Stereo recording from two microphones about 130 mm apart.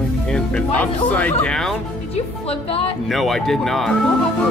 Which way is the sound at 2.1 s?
50° left (ahead or behind).